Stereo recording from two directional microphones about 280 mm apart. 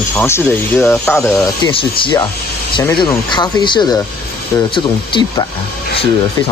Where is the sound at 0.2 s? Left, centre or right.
Centre.